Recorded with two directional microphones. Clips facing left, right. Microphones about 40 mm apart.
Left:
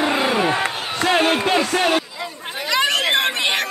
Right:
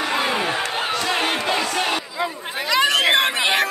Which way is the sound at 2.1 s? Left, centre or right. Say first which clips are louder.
Right 4 dB; centre.